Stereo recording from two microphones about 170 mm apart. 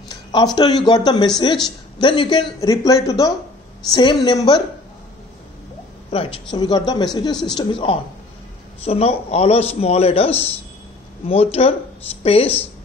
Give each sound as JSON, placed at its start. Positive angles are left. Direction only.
{"t": 0.1, "sound": "a man's voice", "side_deg": 25}
{"t": 6.1, "sound": "a man's voice", "side_deg": 35}